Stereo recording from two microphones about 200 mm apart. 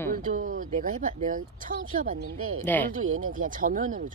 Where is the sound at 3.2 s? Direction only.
40° right (ahead or behind).